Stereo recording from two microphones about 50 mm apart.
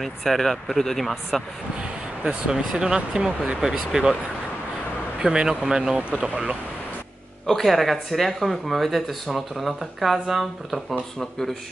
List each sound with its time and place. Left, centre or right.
0.0 s speech: centre
1.8 s speech: centre
5.2 s speech: centre
5.9 s speech: right
7.4 s speech: centre